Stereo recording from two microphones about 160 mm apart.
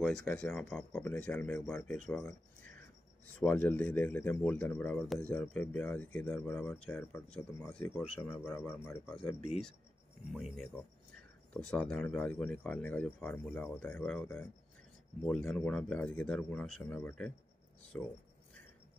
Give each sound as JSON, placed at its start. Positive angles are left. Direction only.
{"t": 0.0, "sound": "speech", "side_deg": 5}
{"t": 3.3, "sound": "a man's voice", "side_deg": 10}
{"t": 9.3, "sound": "speech", "side_deg": 40}
{"t": 10.3, "sound": "a man's voice", "side_deg": 0}